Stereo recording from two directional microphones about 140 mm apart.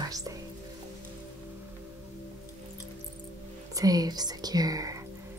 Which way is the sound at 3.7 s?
25° right (ahead or behind).